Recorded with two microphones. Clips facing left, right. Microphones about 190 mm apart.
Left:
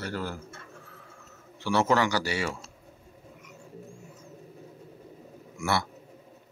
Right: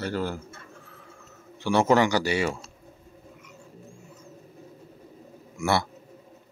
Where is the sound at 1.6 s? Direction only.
15° right (ahead or behind).